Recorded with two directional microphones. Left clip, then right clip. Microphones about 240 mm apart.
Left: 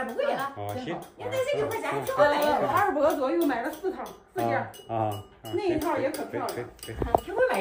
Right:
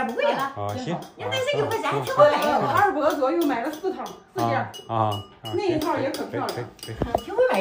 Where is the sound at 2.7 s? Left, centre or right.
Left.